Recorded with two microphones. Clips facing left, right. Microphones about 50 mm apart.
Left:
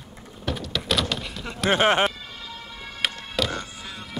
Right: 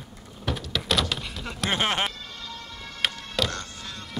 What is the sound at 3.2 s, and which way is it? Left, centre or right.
Music, centre.